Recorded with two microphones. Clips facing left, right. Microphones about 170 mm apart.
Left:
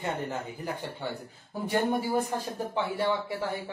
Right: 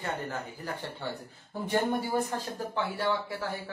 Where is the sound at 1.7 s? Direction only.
10° left (ahead or behind).